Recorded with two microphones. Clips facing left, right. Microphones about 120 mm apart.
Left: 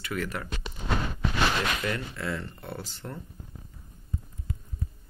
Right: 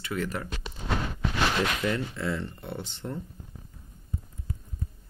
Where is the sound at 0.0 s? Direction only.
25° right (ahead or behind).